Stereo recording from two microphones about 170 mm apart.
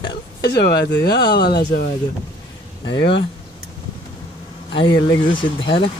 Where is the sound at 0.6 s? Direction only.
70° left (ahead or behind).